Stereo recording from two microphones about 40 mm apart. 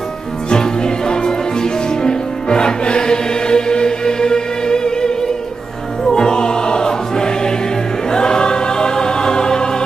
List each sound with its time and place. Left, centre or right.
0.5 s music: centre
8.1 s choir: centre